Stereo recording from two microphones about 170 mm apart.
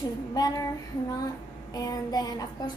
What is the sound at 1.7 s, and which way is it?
Speech, 20° left (ahead or behind).